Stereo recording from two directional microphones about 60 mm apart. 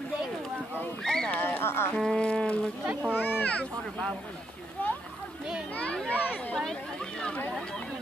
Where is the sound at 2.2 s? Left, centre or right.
Centre.